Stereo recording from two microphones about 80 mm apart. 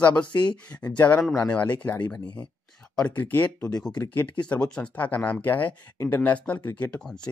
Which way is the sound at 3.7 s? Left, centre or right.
Left.